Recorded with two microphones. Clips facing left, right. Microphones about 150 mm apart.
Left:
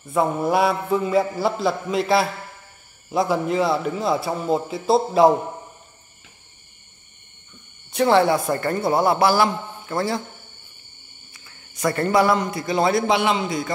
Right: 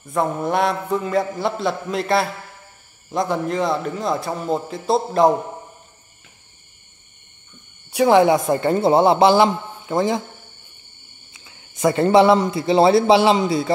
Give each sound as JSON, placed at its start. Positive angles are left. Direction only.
{"t": 0.0, "sound": "a man's voice", "side_deg": 5}
{"t": 7.9, "sound": "a man's voice", "side_deg": -10}
{"t": 11.3, "sound": "a man's voice", "side_deg": -20}